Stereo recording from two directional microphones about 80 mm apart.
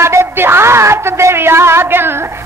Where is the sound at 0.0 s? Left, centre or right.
Right.